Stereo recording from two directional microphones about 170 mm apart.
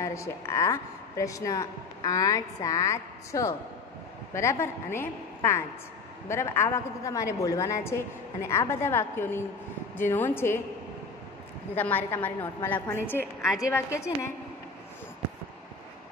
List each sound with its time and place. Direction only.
0.0 s a woman's voice: 15° left (ahead or behind)
11.7 s a woman's voice: 10° left (ahead or behind)